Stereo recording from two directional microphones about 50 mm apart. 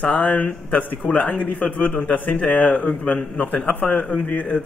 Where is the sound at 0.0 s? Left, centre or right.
Left.